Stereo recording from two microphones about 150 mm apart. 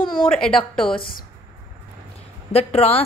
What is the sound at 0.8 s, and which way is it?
Speech, 35° left (ahead or behind).